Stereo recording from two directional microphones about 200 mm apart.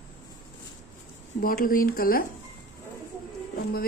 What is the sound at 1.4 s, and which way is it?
Speech, 45° left (ahead or behind).